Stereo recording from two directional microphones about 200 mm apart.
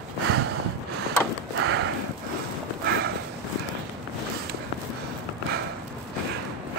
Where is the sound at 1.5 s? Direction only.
70° right (ahead or behind).